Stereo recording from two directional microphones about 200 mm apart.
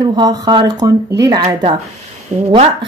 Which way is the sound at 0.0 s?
20° right (ahead or behind).